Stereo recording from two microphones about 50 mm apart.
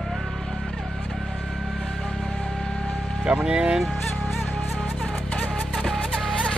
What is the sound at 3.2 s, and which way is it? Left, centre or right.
Speech, centre.